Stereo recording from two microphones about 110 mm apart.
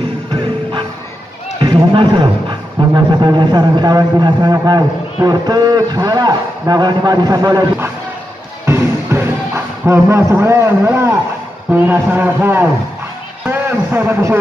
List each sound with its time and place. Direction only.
0.3 s music: 50° right (ahead or behind)
1.6 s run: 40° right (ahead or behind)
2.9 s speech: 40° right (ahead or behind)
8.6 s music: 25° right (ahead or behind)
9.8 s a man's voice: 25° right (ahead or behind)
13.5 s a sound: 20° right (ahead or behind)